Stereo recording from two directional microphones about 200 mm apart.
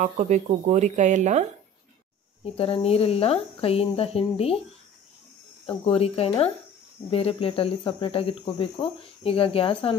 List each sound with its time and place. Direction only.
0.0 s speech: 35° right (ahead or behind)
2.4 s speech: 30° left (ahead or behind)
5.9 s speech: 30° left (ahead or behind)